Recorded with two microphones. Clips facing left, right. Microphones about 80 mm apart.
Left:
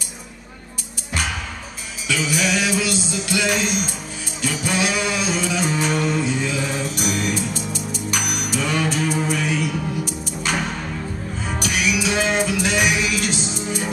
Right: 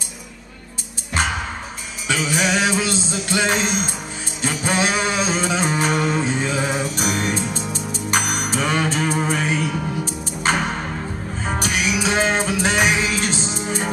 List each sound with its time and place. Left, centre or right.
1.1 s music: right